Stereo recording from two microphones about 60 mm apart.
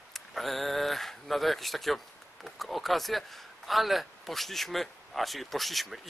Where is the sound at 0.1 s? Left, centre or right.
Centre.